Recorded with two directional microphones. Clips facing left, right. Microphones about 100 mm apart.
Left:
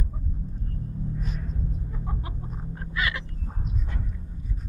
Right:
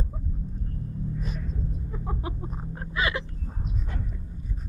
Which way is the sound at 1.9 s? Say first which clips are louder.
Right 3 dB; 20° right (ahead or behind).